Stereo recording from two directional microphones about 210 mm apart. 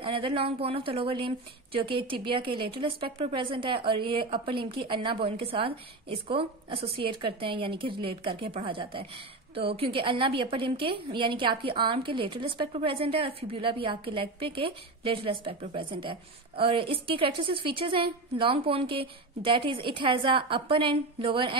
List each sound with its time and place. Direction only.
0.0 s a woman's voice: 25° right (ahead or behind)